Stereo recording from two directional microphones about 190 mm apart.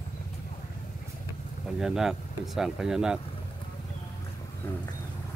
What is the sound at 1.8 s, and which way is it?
Speech, centre (ahead or behind).